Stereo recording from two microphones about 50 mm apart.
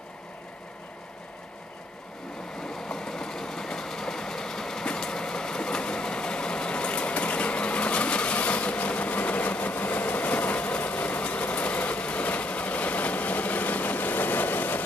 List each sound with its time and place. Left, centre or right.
2.6 s train: centre; by 14.8 s left